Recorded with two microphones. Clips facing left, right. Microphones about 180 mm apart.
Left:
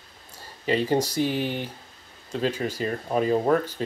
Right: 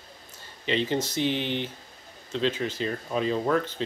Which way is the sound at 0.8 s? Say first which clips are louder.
Left 4 dB; 35° left (ahead or behind).